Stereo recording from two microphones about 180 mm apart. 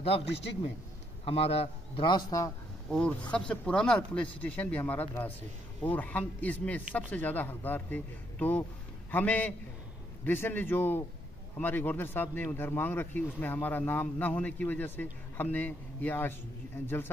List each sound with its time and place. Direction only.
1.2 s a man's voice: 35° left (ahead or behind)
2.9 s a man's voice: 5° left (ahead or behind)